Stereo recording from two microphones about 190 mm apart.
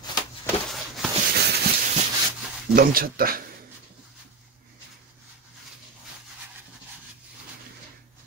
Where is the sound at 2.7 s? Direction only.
50° right (ahead or behind).